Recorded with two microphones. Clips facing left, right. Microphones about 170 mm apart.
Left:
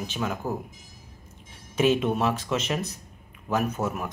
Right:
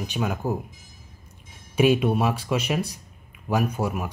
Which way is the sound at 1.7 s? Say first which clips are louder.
Right 3 dB; 10° right (ahead or behind).